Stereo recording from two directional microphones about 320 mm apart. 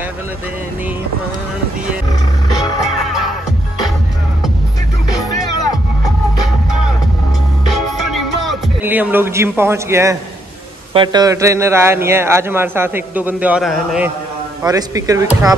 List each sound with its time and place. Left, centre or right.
7.7 s music: centre
10.9 s a man's voice: centre